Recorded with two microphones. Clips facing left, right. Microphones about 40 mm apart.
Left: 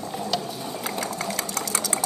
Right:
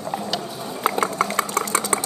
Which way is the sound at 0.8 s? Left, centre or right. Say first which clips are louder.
Right 10 dB; right.